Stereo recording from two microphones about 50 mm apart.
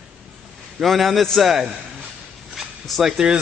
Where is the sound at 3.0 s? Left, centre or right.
Centre.